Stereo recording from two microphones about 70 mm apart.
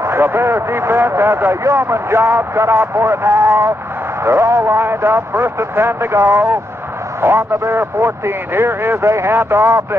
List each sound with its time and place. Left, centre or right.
0.0 s a man's voice: right